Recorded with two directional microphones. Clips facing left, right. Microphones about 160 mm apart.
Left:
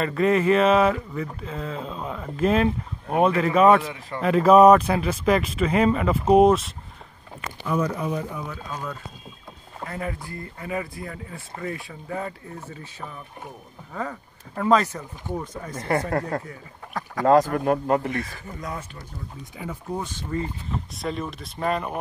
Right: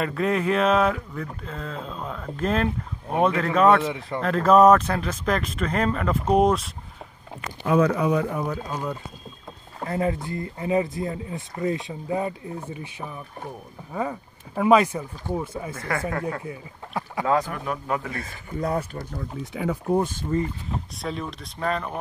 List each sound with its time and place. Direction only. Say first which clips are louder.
0.0 s speech: left 3 dB; centre (ahead or behind)
3.8 s speech: right 5 dB; 25° right (ahead or behind)
4.2 s speech: left 2 dB; 10° left (ahead or behind)
7.6 s speech: right 5 dB; 80° right
9.8 s speech: right 7 dB; 25° right (ahead or behind)
13.9 s speech: right 3 dB; 10° right (ahead or behind)
15.8 s speech: left 4 dB; 35° left (ahead or behind)
16.4 s speech: right 4 dB; 10° right (ahead or behind)
17.2 s speech: left 6 dB; 40° left (ahead or behind)
18.1 s speech: left 2 dB; 30° right (ahead or behind)
19.5 s speech: right 8 dB; 75° right (ahead or behind)
20.3 s speech: right 3 dB; 20° right (ahead or behind)
21.0 s speech: left 3 dB; centre (ahead or behind)